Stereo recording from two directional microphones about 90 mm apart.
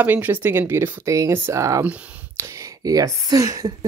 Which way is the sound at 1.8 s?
20° right (ahead or behind).